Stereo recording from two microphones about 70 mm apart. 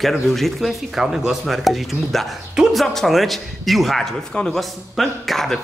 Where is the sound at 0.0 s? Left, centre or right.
Centre.